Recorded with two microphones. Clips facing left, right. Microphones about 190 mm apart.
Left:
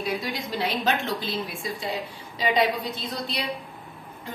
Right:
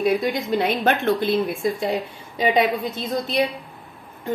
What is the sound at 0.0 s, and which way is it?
A woman's voice, 55° right (ahead or behind).